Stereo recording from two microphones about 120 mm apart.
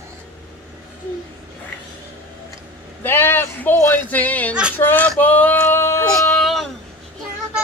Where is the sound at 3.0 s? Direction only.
20° left (ahead or behind).